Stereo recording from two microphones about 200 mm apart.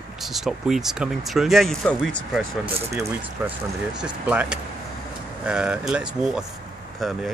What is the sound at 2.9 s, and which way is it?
Speech, 10° right (ahead or behind).